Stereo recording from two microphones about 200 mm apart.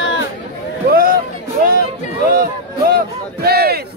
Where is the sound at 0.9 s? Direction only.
45° right (ahead or behind).